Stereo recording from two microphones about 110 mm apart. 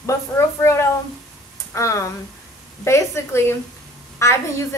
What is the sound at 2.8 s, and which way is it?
A woman's voice, 25° left (ahead or behind).